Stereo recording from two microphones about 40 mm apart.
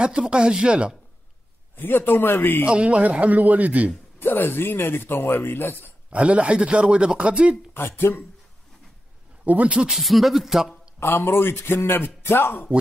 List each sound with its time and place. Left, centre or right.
0.0 s speech: right
1.8 s a man's voice: left
2.6 s speech: right
4.2 s speech: left
6.0 s speech: right
7.7 s speech: left
9.4 s speech: right
9.8 s speech: centre
11.0 s speech: left